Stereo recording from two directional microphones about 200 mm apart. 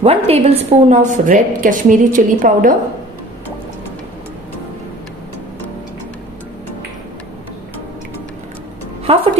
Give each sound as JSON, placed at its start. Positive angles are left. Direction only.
{"t": 0.0, "sound": "a woman's voice", "side_deg": -30}
{"t": 9.0, "sound": "music", "side_deg": -25}